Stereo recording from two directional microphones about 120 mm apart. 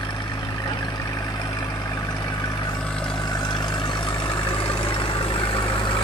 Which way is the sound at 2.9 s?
5° left (ahead or behind).